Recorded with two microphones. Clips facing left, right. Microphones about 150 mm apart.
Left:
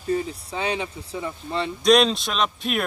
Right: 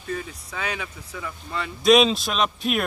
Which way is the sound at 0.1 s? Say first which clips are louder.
Left 6 dB; 30° left (ahead or behind).